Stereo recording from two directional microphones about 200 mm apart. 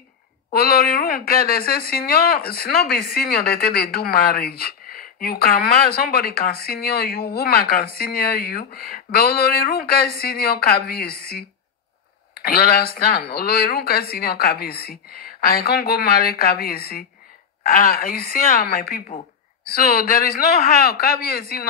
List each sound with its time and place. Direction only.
0.5 s speech: 50° left (ahead or behind)
12.4 s speech: 50° left (ahead or behind)
18.9 s speech: 35° left (ahead or behind)
19.7 s speech: 45° left (ahead or behind)